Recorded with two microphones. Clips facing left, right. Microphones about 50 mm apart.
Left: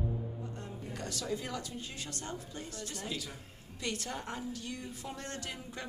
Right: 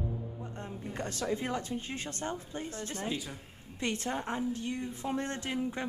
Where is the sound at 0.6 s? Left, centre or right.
Right.